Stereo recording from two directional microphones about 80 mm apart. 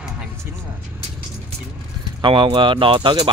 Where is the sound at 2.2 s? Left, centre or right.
Right.